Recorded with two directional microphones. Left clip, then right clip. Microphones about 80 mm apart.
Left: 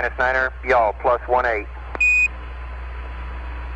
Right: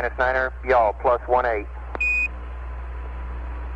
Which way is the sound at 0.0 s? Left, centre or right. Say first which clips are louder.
Left 2 dB; left.